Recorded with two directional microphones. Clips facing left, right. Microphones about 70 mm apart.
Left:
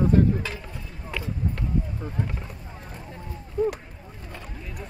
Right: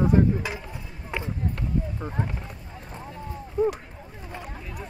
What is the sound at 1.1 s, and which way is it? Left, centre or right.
Run, right.